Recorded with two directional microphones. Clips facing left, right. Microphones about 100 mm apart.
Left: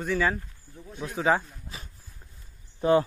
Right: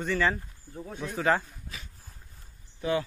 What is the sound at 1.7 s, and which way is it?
Speech, 30° left (ahead or behind).